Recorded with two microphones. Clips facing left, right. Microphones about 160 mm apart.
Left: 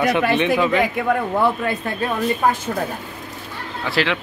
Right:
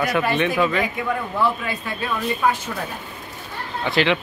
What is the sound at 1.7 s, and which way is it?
Speech, 45° left (ahead or behind).